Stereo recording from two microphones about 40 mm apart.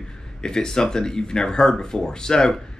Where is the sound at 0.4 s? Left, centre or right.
Centre.